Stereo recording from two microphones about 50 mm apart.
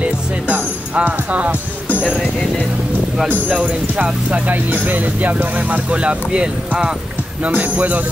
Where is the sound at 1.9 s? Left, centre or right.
Left.